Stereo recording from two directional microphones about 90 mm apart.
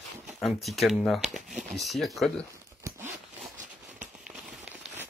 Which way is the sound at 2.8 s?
30° right (ahead or behind).